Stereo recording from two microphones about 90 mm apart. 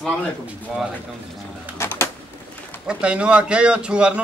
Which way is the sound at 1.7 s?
30° left (ahead or behind).